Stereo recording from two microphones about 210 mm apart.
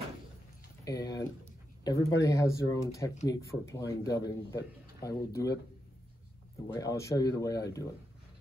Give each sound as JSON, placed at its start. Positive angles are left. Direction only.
{"t": 0.8, "sound": "a sound", "side_deg": 15}
{"t": 1.9, "sound": "a man's voice", "side_deg": 15}
{"t": 6.7, "sound": "a man's voice", "side_deg": 15}